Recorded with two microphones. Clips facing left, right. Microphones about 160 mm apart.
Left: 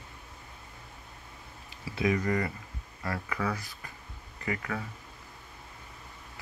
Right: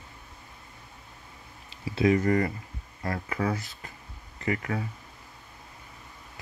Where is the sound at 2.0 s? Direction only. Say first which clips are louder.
Right 5 dB; 35° right (ahead or behind).